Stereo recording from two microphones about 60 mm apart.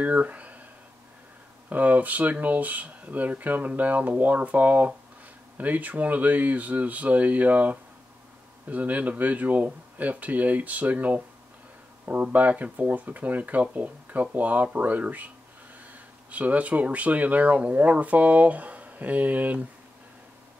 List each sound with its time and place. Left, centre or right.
0.0 s speech: right
1.7 s speech: right